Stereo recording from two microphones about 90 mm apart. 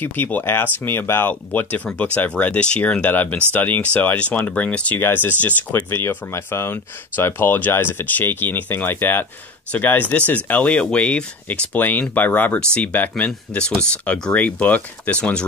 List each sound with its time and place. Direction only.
0.0 s speech: 20° left (ahead or behind)